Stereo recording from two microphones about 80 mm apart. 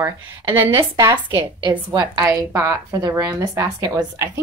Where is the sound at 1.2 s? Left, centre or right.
Right.